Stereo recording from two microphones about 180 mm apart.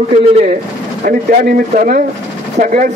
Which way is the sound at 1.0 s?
50° right (ahead or behind).